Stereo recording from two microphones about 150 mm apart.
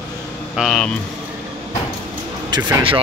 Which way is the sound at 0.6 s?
Centre (ahead or behind).